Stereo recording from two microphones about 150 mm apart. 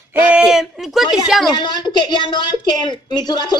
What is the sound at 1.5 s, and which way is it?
A woman's voice, 30° left (ahead or behind).